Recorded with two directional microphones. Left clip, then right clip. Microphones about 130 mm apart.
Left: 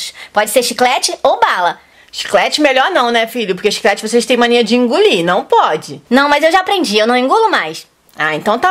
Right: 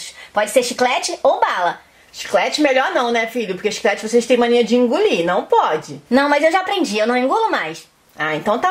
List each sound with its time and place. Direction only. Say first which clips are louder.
0.3 s speech: left 4 dB; 30° left (ahead or behind)